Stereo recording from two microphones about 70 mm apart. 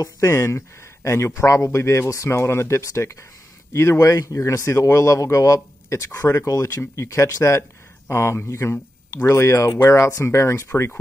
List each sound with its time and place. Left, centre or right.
0.0 s speech: left